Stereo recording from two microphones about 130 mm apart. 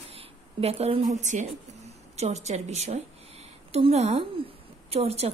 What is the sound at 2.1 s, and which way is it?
A woman's voice, 60° right (ahead or behind).